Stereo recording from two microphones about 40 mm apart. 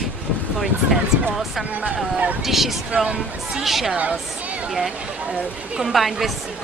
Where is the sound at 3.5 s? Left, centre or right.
Centre.